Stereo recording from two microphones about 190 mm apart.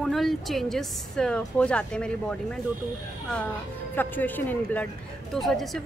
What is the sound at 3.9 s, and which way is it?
A woman's voice, 10° left (ahead or behind).